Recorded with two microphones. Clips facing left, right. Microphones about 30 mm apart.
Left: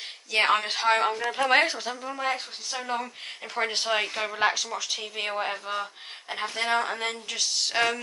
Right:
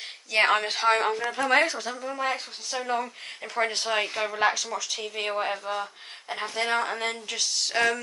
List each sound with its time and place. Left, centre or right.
0.3 s speech: centre
1.3 s a woman's voice: centre
2.0 s speech: centre